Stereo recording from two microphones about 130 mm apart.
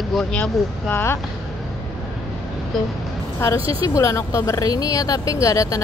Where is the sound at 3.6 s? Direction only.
45° right (ahead or behind).